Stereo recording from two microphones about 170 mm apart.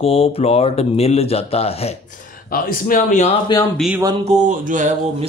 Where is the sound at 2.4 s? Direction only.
60° left (ahead or behind).